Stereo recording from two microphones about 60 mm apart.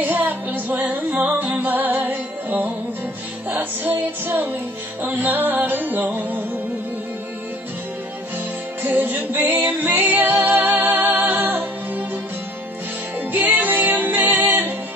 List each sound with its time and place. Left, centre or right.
0.0 s music: right
8.8 s music: right
13.3 s music: right